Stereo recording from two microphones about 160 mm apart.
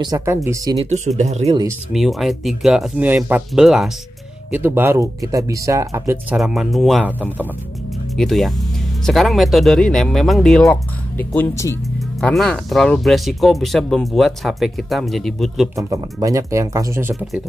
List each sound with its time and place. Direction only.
0.0 s speech: 20° right (ahead or behind)
0.8 s speech: 50° right (ahead or behind)
1.9 s speech: centre (ahead or behind); by 6.1 s 20° right (ahead or behind)
6.3 s speech: 5° right (ahead or behind)
7.1 s speech: 10° right (ahead or behind)
8.2 s speech: centre (ahead or behind)
12.2 s speech: 5° left (ahead or behind)
15.7 s speech: 20° right (ahead or behind)